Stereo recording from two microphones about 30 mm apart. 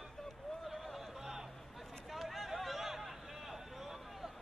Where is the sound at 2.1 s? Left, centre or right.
Centre.